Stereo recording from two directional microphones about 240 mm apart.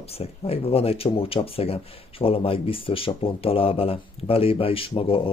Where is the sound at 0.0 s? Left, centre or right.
Left.